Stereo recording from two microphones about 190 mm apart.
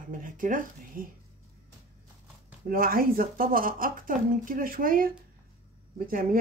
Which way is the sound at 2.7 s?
50° right (ahead or behind).